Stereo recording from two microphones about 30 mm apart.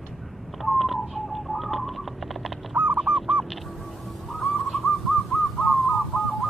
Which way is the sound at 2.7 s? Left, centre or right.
Right.